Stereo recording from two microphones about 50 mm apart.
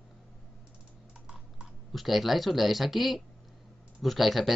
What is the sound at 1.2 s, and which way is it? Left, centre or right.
Typing, centre.